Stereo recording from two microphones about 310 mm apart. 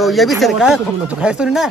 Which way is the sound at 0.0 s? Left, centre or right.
Centre.